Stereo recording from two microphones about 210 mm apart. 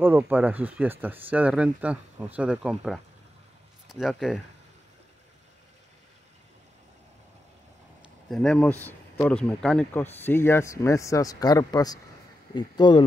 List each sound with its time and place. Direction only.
0.0 s speech: 10° right (ahead or behind)
8.3 s speech: 5° left (ahead or behind); by 13.0 s 20° left (ahead or behind)